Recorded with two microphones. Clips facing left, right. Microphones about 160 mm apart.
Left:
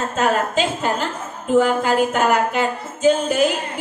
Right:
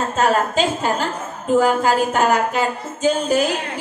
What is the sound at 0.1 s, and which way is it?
A woman's voice, 40° right (ahead or behind).